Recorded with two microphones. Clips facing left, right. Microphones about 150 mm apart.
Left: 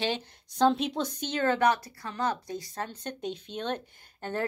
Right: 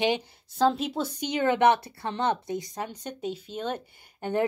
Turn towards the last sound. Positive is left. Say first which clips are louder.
# right 6 dB
turn(degrees=-10)  # may be behind; listen again after turning